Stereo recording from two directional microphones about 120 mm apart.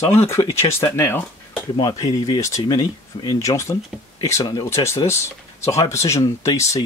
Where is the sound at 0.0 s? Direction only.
20° left (ahead or behind).